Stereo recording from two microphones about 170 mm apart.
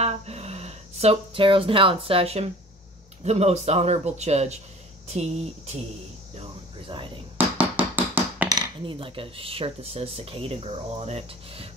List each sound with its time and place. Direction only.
0.0 s speech: 40° right (ahead or behind)
3.3 s cutlery: 40° right (ahead or behind)
5.0 s speech: 40° right (ahead or behind)
6.3 s cricket: 35° right (ahead or behind)
7.3 s hammer: 10° right (ahead or behind)
8.5 s cutlery: 25° right (ahead or behind)